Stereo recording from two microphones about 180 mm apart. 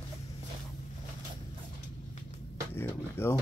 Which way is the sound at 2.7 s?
10° left (ahead or behind).